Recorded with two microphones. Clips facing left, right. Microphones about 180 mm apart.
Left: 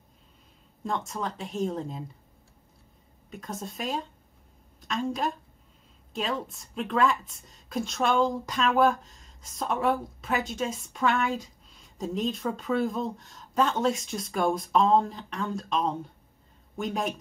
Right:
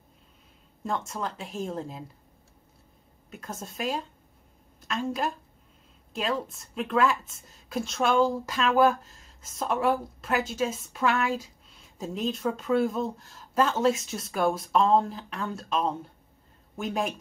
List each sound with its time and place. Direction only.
0.8 s a woman's voice: centre (ahead or behind)
3.3 s a woman's voice: centre (ahead or behind)